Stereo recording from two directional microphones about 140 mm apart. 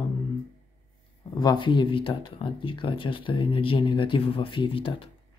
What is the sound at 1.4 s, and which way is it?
Speech, 35° left (ahead or behind).